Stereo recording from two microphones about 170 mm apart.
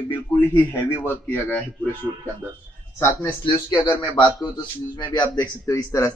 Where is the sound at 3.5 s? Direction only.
25° left (ahead or behind).